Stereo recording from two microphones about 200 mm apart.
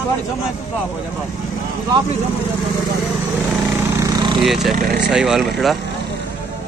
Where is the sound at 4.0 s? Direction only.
20° right (ahead or behind).